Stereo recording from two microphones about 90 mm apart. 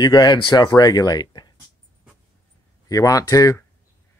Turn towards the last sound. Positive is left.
turn(degrees=40)  # may be behind; listen again after turning